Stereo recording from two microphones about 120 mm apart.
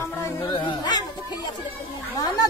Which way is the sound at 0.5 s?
35° left (ahead or behind).